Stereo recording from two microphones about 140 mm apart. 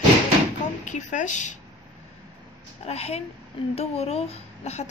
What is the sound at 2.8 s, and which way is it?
A woman's voice, 50° left (ahead or behind).